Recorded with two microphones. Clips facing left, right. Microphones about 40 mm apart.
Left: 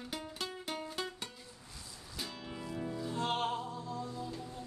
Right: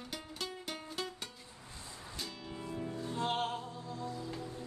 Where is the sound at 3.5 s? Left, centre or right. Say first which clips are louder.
Left 3 dB; left.